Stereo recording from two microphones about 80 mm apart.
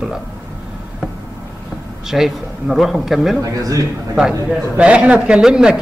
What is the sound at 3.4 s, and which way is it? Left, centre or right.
Speech, right.